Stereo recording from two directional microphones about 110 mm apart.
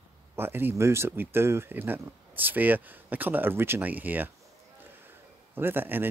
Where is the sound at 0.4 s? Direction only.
20° right (ahead or behind).